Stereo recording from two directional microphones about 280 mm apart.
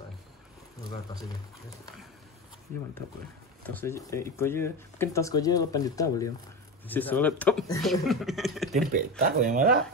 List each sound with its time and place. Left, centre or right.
3.6 s speech: centre
9.2 s speech: right